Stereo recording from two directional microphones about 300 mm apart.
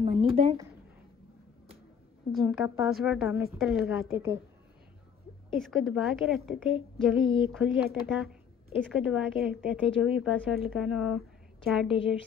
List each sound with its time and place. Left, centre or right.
0.0 s a sound: right
2.3 s speech: centre
5.5 s speech: centre